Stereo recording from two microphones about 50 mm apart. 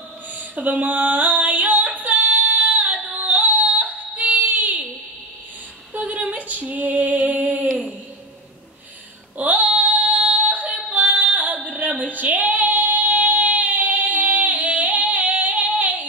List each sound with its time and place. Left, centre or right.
0.3 s a sound: right
5.9 s female singing: right
9.4 s female singing: right